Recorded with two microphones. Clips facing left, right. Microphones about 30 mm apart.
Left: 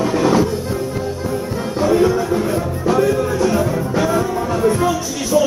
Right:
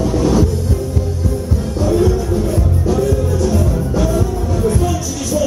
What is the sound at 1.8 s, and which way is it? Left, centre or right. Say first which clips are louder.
Music: left 1 dB; left.